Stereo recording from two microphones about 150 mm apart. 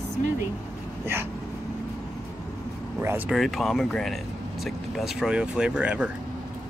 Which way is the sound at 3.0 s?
15° right (ahead or behind).